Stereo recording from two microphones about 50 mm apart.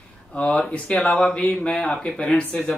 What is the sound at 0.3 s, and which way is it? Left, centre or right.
A man's voice, left.